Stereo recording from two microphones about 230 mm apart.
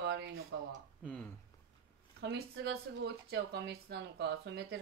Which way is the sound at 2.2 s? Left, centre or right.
Right.